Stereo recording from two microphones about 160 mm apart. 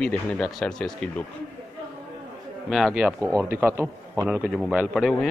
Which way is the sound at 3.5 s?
15° right (ahead or behind).